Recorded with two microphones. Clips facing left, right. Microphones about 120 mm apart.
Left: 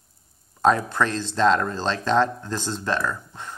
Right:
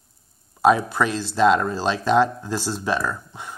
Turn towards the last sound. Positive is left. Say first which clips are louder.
# right 1 dB
turn(degrees=-10)  # may be behind; listen again after turning